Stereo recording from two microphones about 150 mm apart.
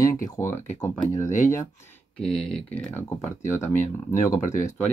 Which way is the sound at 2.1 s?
5° left (ahead or behind).